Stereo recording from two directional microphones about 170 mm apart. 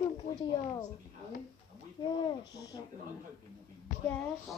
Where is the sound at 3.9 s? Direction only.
55° left (ahead or behind).